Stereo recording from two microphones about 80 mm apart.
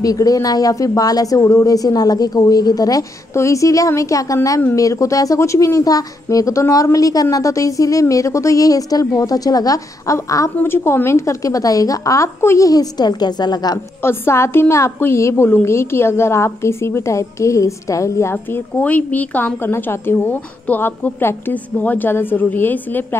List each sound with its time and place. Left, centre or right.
0.0 s a woman's voice: left
10.1 s a woman's voice: left
12.6 s a woman's voice: left
14.0 s a woman's voice: left
18.3 s a woman's voice: left